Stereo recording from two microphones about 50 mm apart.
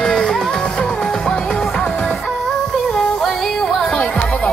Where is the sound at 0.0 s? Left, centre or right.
Centre.